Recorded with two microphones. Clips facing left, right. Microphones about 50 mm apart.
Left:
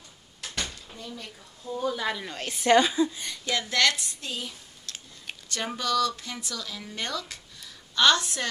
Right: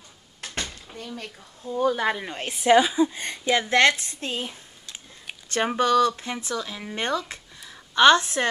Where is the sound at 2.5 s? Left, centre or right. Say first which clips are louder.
Right 3 dB; centre.